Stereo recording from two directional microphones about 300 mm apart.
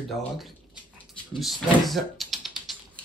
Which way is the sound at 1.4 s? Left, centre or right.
Centre.